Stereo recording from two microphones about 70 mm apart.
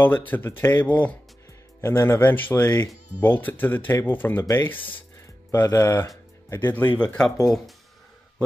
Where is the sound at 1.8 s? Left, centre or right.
Left.